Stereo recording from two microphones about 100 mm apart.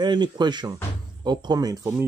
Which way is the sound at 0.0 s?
45° right (ahead or behind).